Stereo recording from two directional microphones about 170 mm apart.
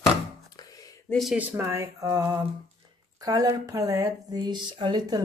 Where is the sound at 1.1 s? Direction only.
Centre (ahead or behind); by 5.2 s 25° right (ahead or behind).